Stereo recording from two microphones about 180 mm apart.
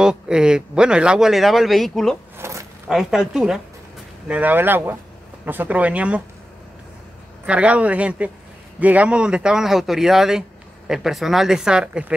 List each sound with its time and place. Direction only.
0.0 s speech: 5° right (ahead or behind)
2.3 s a sound: 15° right (ahead or behind)
2.9 s speech: centre (ahead or behind)
7.4 s speech: 5° right (ahead or behind)